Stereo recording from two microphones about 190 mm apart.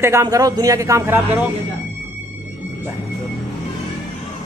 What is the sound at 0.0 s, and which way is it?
A man's voice, 15° right (ahead or behind).